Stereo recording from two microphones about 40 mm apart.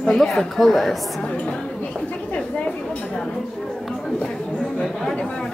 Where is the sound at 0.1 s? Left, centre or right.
Centre.